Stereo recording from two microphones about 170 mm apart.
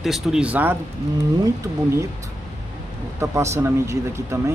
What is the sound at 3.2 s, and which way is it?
Speech, 15° right (ahead or behind).